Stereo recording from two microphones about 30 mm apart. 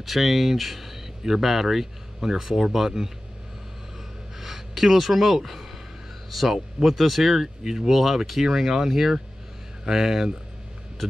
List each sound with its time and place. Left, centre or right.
0.0 s speech: centre
4.4 s speech: centre
7.6 s speech: centre
7.9 s speech: centre